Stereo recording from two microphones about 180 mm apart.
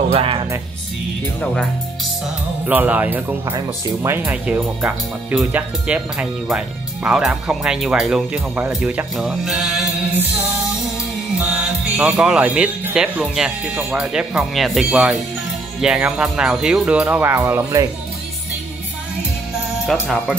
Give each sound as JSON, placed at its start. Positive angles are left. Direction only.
{"t": 0.1, "sound": "speech", "side_deg": -30}
{"t": 1.4, "sound": "speech", "side_deg": 5}
{"t": 2.6, "sound": "speech", "side_deg": -10}
{"t": 11.3, "sound": "speech", "side_deg": -5}
{"t": 19.9, "sound": "speech", "side_deg": 0}